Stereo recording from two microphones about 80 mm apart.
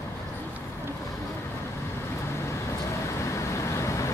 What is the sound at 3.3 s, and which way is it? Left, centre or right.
Vehicle, left.